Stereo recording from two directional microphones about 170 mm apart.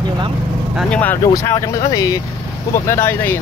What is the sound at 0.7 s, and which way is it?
Speech, 5° left (ahead or behind).